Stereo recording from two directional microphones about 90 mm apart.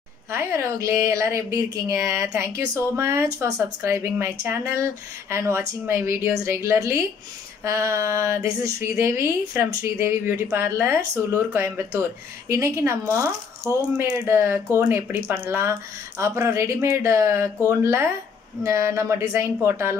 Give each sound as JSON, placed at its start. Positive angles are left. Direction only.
{"t": 0.3, "sound": "a woman's voice", "side_deg": -30}